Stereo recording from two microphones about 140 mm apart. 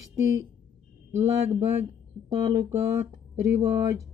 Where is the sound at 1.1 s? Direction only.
15° right (ahead or behind).